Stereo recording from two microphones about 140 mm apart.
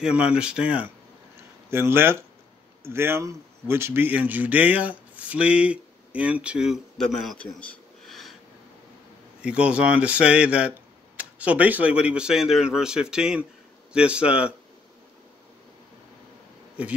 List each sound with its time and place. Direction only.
0.0 s speech: 5° right (ahead or behind)
9.4 s speech: 10° right (ahead or behind)
16.8 s speech: 10° right (ahead or behind)